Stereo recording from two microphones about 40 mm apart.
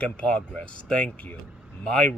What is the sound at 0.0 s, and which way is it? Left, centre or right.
Speech, left.